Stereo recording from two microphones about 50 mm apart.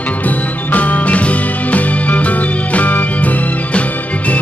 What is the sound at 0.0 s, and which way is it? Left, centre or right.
Music, left.